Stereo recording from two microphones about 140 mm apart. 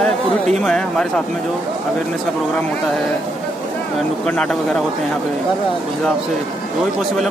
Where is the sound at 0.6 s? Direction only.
5° left (ahead or behind).